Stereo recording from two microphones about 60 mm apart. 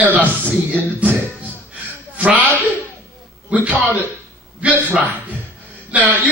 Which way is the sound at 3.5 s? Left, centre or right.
Right.